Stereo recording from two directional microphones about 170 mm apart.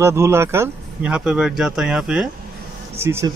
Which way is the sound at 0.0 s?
15° right (ahead or behind).